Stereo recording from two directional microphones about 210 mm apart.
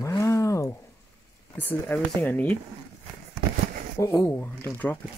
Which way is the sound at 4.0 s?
15° left (ahead or behind).